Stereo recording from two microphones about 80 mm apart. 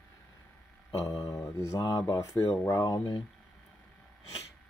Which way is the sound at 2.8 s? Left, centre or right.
Left.